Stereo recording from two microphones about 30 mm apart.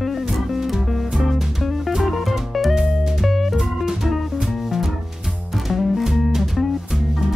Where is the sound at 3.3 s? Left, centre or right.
Centre.